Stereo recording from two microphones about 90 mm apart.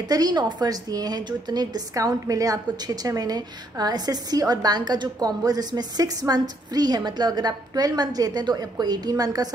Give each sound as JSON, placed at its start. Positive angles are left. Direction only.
{"t": 0.0, "sound": "a woman's voice", "side_deg": -50}